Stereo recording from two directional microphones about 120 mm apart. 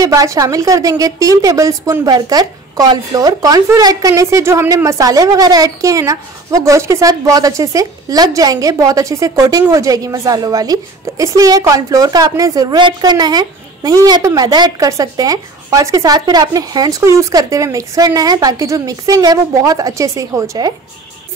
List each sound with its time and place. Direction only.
0.0 s a woman's voice: 30° right (ahead or behind)